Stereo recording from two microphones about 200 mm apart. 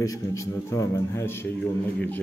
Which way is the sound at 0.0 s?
15° left (ahead or behind).